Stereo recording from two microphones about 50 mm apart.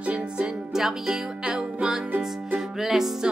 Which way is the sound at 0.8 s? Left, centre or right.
Centre.